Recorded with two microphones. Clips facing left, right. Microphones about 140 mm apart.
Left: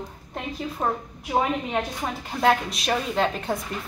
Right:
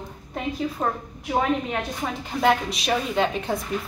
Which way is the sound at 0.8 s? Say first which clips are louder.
Even; 5° left (ahead or behind).